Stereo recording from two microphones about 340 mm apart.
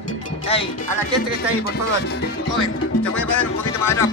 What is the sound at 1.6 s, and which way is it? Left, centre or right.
Speech, left.